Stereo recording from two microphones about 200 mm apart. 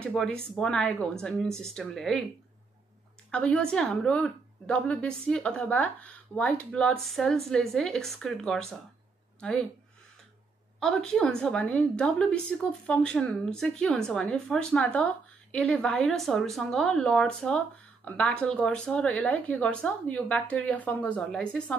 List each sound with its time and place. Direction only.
0.0 s a woman's voice: 5° left (ahead or behind)
3.3 s a woman's voice: 5° left (ahead or behind)
10.8 s a woman's voice: centre (ahead or behind)